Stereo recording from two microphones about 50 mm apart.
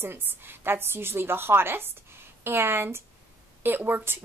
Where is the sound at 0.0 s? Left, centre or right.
Right.